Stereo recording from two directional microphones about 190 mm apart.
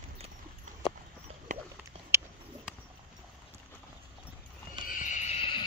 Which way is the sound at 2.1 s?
10° right (ahead or behind).